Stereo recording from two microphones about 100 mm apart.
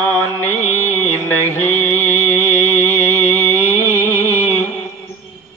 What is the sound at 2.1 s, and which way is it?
Music, 20° left (ahead or behind).